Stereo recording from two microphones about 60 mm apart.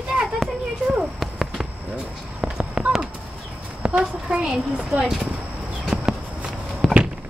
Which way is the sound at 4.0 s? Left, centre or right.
Centre.